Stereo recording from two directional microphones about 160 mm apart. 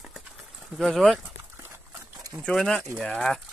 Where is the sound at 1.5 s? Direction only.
15° right (ahead or behind).